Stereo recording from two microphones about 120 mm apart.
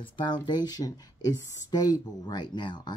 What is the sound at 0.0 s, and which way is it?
Speech, 40° left (ahead or behind).